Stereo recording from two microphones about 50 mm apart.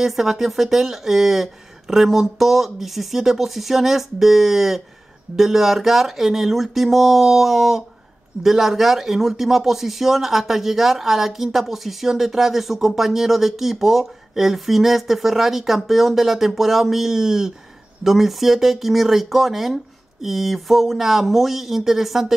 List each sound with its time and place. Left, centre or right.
0.0 s speech: centre